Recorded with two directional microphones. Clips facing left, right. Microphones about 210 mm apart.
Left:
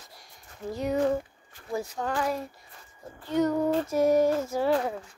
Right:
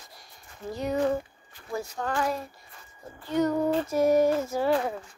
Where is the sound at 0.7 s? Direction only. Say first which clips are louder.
Left 1 dB; 5° left (ahead or behind).